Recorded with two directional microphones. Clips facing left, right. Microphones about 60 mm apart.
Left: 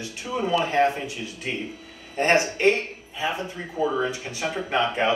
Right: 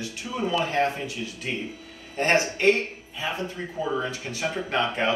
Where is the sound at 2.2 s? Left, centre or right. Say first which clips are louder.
Left 2 dB; left.